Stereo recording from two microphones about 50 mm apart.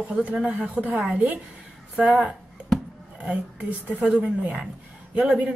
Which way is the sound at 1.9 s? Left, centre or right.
Centre.